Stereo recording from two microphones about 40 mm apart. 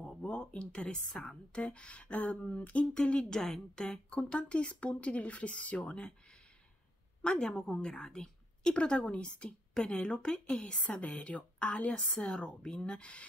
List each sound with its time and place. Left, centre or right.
0.3 s speech: left